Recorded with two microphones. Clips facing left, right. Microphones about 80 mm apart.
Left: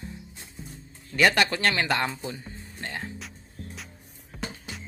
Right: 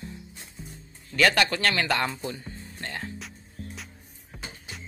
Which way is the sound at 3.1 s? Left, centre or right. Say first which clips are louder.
Right 1 dB; centre.